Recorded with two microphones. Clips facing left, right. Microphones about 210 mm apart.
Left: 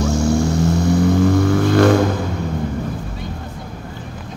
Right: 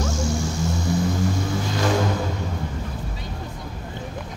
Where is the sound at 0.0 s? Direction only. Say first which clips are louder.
Left 8 dB; 60° left (ahead or behind).